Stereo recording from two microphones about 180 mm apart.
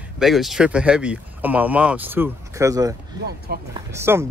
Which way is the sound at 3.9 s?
15° right (ahead or behind).